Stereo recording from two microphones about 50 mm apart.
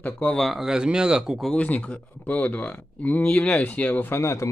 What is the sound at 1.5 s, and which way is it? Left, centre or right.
Speech, left.